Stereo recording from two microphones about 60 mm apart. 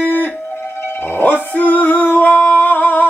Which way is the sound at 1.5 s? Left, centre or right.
Left.